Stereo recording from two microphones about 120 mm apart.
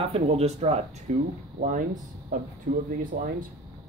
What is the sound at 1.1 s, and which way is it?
Speech, 80° right.